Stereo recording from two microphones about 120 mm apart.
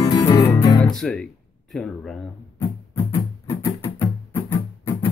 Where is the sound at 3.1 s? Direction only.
25° left (ahead or behind).